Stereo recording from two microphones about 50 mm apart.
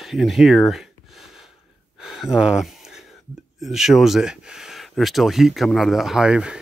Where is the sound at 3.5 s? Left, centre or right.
Centre.